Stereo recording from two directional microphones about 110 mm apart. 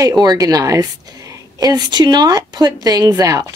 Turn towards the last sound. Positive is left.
turn(degrees=-30)  # may be behind; listen again after turning